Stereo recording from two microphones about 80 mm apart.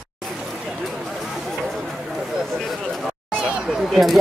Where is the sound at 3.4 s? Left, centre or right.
Centre.